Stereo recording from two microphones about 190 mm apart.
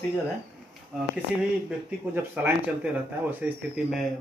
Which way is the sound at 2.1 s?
10° right (ahead or behind).